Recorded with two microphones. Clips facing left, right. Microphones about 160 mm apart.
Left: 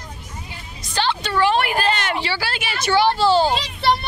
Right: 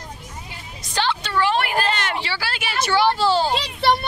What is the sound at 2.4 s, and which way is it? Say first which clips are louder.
Speech: right 1 dB; centre (ahead or behind).